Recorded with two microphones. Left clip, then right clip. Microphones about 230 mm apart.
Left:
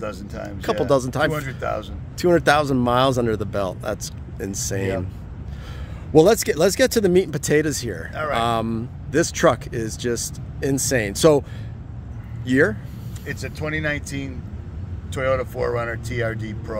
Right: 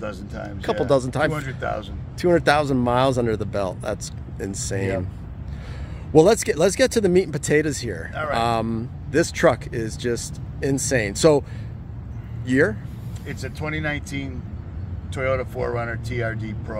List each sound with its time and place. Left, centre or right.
0.0 s speech: centre
6.1 s speech: centre
12.4 s speech: centre
13.3 s speech: left